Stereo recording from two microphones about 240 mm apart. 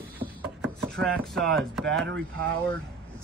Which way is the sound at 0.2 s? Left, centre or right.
Right.